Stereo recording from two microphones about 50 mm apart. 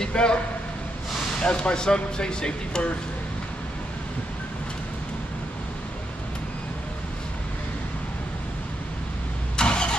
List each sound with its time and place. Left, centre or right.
0.0 s speech: centre
1.4 s speech: centre
9.6 s vehicle: centre